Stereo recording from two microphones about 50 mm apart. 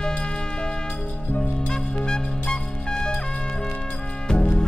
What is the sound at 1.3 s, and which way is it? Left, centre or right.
Music, centre.